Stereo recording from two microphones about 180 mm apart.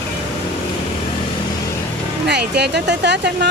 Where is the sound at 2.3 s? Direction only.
65° right (ahead or behind).